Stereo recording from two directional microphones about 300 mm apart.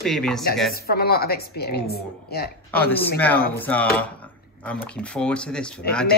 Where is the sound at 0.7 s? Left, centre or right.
Left.